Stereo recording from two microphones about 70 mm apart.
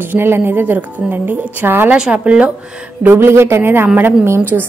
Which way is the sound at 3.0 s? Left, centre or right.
Right.